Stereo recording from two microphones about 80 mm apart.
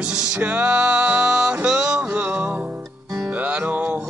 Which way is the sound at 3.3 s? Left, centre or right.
Centre.